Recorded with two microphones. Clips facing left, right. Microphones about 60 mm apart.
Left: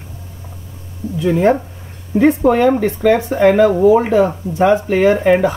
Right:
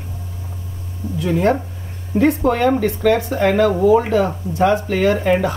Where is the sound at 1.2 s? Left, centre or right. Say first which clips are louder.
Left 4 dB; centre.